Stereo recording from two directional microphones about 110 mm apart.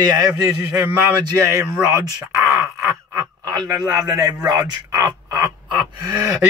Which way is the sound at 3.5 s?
30° right (ahead or behind).